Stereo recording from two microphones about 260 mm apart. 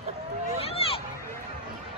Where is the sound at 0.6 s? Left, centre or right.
Left.